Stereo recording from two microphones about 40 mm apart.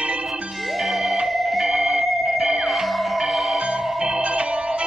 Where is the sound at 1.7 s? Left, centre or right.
Centre.